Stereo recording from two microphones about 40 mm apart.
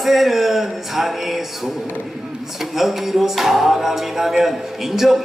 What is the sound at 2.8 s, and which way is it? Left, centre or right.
Music, centre.